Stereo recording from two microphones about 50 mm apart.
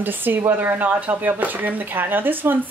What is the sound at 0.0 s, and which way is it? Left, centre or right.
Speech, right.